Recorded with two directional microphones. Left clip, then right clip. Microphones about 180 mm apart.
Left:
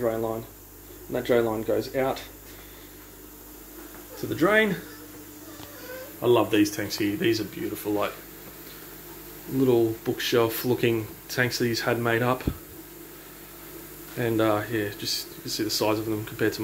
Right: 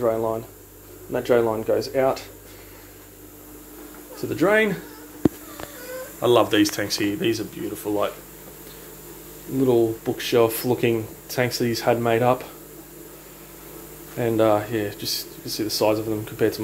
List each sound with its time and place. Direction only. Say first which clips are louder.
0.0 s speech: right 5 dB; 5° right (ahead or behind)
4.2 s speech: right 2 dB; 10° right (ahead or behind)
6.2 s speech: right 4 dB; 5° right (ahead or behind)
9.6 s speech: right 3 dB; 5° right (ahead or behind)
14.1 s speech: right 5 dB; 10° right (ahead or behind)